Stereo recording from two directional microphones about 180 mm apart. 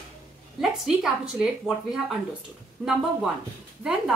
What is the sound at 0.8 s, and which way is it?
A woman's voice, 5° right (ahead or behind).